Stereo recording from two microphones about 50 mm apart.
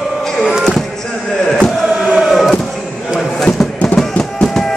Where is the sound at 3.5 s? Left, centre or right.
Left.